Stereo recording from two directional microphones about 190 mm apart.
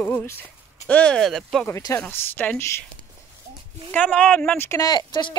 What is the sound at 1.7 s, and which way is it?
Speech, 15° left (ahead or behind).